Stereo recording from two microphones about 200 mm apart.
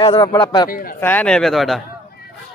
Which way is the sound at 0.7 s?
45° left (ahead or behind).